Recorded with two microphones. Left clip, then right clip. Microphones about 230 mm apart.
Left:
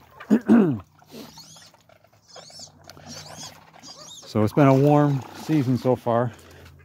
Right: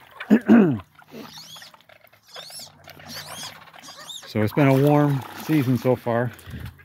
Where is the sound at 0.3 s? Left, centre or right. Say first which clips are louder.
Right 2 dB; centre.